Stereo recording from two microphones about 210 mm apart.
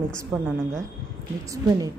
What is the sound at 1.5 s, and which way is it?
Speech, 15° right (ahead or behind).